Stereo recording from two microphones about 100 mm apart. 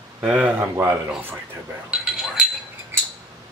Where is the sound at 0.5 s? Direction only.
20° right (ahead or behind).